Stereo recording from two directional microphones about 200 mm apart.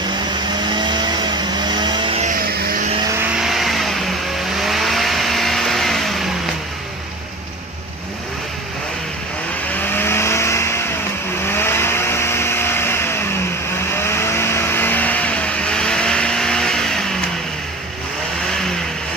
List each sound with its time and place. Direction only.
0.6 s vehicle: 20° right (ahead or behind)
2.2 s vehicle: 45° right (ahead or behind)
3.2 s vehicle: centre (ahead or behind)
9.9 s vehicle: 10° left (ahead or behind)